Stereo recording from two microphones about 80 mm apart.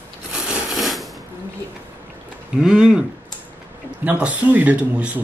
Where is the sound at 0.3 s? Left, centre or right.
Centre.